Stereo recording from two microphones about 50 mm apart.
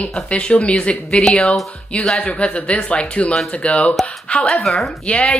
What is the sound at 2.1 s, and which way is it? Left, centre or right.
Speech, left.